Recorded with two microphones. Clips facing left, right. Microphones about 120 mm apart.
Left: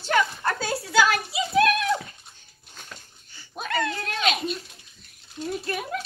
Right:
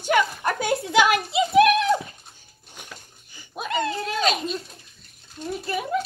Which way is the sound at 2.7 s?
15° right (ahead or behind).